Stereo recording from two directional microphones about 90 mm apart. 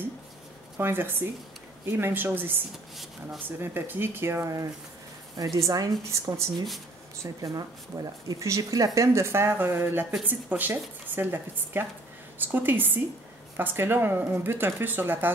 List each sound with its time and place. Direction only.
0.7 s speech: 25° right (ahead or behind)